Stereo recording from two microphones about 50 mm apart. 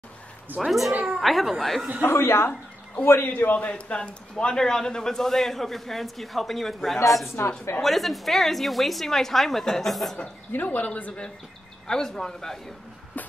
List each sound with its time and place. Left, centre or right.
0.6 s a man's voice: centre
2.0 s a woman's voice: left
3.3 s a man's voice: left; by 7.3 s centre
7.3 s a woman's voice: left
7.8 s a man's voice: centre
10.5 s a man's voice: left
11.9 s speech: centre